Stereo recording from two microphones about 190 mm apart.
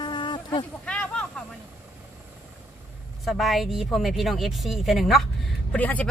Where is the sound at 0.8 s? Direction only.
5° left (ahead or behind).